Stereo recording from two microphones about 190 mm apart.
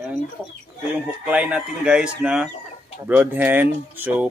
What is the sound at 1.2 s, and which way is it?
Speech, 5° right (ahead or behind).